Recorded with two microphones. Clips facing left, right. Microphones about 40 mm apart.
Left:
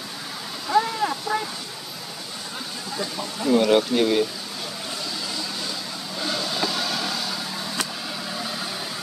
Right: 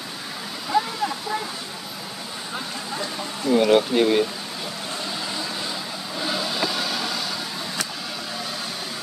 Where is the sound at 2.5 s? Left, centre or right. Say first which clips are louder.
Right 2 dB; centre.